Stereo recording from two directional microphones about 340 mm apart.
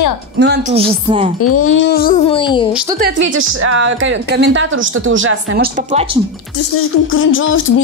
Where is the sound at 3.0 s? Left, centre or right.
Right.